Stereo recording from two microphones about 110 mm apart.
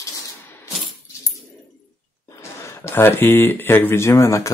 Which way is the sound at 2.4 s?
25° left (ahead or behind).